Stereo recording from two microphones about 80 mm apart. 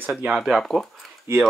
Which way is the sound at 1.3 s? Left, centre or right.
Right.